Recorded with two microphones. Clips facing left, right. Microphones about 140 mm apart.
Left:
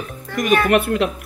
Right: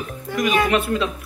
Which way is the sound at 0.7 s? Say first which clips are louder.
Left 3 dB; 60° left (ahead or behind).